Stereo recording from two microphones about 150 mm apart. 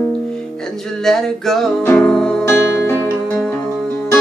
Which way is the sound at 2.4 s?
15° left (ahead or behind).